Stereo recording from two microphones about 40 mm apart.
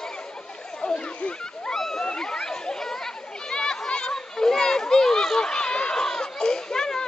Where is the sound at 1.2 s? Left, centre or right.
Left.